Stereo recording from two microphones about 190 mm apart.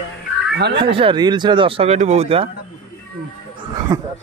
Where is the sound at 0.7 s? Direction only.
25° right (ahead or behind).